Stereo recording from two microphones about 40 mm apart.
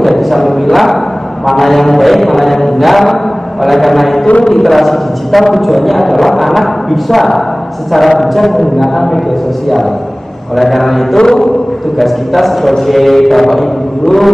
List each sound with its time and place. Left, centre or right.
0.0 s a sound: centre
1.4 s a man's voice: centre
10.5 s a man's voice: centre
11.1 s chant: centre
12.0 s a man's voice: centre